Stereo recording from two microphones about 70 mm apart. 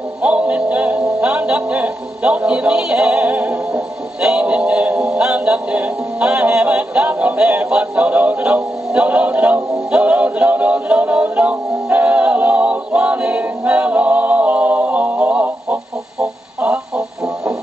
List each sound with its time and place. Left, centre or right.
0.2 s speech: centre
4.2 s synthetic singing: centre
16.2 s a sound: centre